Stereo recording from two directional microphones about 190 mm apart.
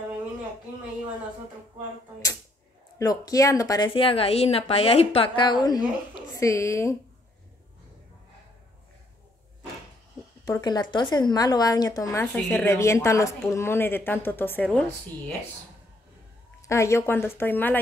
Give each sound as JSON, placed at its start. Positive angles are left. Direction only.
{"t": 3.0, "sound": "a woman's voice", "side_deg": 20}
{"t": 10.4, "sound": "a woman's voice", "side_deg": 20}
{"t": 16.6, "sound": "a woman's voice", "side_deg": 15}